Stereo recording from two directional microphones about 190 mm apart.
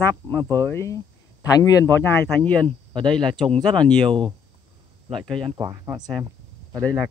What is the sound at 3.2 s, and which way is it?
Speech, 25° right (ahead or behind).